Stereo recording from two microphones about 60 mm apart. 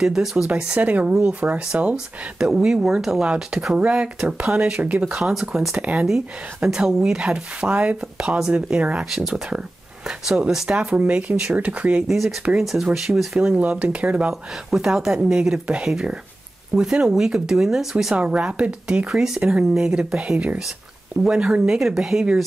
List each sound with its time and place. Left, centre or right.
0.0 s speech: centre
0.7 s speech: right
5.1 s speech: centre
5.8 s speech: right
6.0 s speech: centre
9.1 s speech: centre
12.1 s speech: centre
13.4 s speech: centre
14.7 s speech: centre
18.1 s speech: centre